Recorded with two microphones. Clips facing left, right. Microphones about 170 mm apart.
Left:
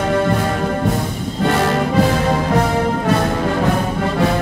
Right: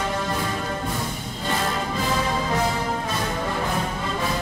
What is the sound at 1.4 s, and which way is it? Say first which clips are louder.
Music: left 10 dB; 75° left (ahead or behind).